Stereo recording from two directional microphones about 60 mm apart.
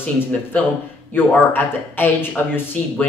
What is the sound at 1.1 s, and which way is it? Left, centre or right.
Speech, left.